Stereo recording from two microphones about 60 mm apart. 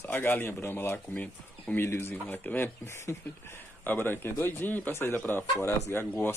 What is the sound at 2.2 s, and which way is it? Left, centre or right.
Speech, left.